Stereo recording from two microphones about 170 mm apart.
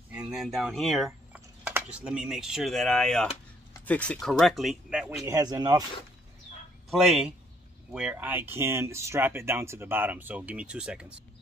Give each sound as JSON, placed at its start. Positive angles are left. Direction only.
{"t": 0.1, "sound": "speech", "side_deg": 0}
{"t": 5.2, "sound": "speech", "side_deg": -20}
{"t": 6.9, "sound": "speech", "side_deg": 0}